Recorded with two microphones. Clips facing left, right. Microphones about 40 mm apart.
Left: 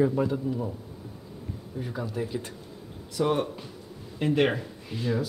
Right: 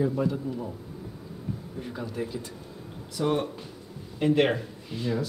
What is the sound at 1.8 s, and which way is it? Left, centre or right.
Speech, centre.